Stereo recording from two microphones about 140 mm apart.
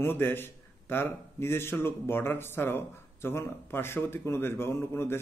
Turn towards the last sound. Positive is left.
turn(degrees=15)  # may be behind; listen again after turning